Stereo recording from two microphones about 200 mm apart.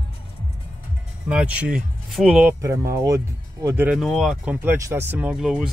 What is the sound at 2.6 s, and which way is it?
Speech, 15° right (ahead or behind).